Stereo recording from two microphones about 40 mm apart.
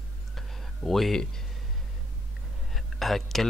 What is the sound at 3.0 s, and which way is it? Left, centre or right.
Speech, centre.